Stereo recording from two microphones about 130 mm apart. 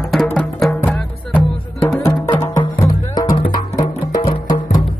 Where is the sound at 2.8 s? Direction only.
25° left (ahead or behind).